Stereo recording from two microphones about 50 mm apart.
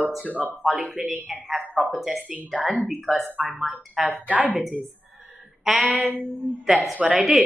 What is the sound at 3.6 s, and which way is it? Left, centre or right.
Speech, centre.